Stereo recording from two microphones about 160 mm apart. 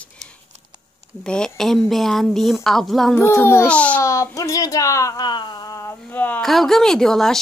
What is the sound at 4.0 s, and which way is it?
Speech, 20° left (ahead or behind).